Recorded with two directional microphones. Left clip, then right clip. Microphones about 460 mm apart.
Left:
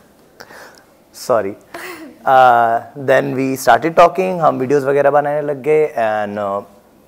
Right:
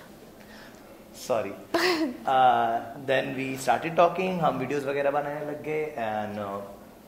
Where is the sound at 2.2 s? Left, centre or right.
Left.